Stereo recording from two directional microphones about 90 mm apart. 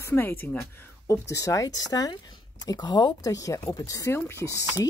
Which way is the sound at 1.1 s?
35° left (ahead or behind).